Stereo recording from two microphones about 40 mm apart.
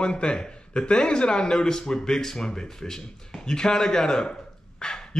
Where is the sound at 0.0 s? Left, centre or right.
Left.